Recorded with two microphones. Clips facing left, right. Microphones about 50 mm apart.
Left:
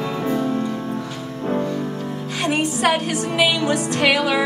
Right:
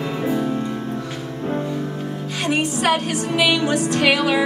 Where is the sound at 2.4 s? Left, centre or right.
Left.